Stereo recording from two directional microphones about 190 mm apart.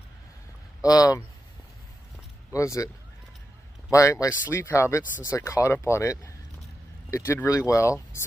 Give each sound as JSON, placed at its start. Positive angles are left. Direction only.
{"t": 0.8, "sound": "speech", "side_deg": 20}
{"t": 2.5, "sound": "speech", "side_deg": 15}
{"t": 3.9, "sound": "speech", "side_deg": 15}